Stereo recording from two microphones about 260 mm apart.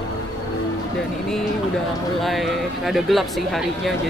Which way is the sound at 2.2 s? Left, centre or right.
Centre.